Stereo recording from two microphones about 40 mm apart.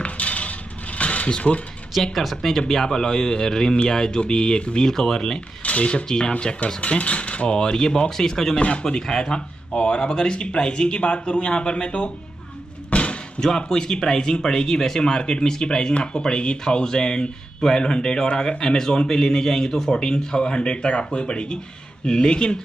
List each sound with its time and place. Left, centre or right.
0.0 s coin: left
2.1 s speech: centre; by 4.9 s left
4.9 s speech: centre
5.6 s speech: left
6.0 s speech: centre
6.8 s speech: left
7.5 s speech: centre
8.5 s speech: left
8.8 s speech: centre
12.9 s a sound: left
13.4 s speech: centre